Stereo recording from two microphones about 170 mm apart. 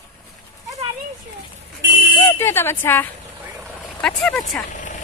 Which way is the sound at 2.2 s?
15° left (ahead or behind).